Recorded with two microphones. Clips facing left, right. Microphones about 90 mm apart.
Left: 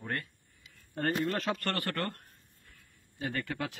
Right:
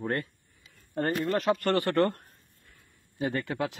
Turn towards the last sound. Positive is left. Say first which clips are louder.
# right 5 dB
turn(degrees=-20)  # may be behind; listen again after turning